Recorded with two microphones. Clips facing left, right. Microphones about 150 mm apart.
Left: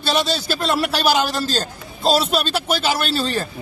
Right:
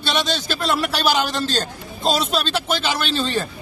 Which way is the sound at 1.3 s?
40° left (ahead or behind).